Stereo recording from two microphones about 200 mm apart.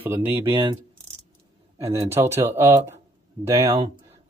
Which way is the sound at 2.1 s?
10° right (ahead or behind).